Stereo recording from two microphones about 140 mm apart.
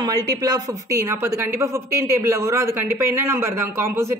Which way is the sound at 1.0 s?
20° right (ahead or behind).